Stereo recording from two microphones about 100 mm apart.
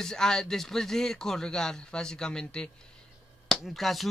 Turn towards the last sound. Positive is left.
turn(degrees=0)  # may be behind; listen again after turning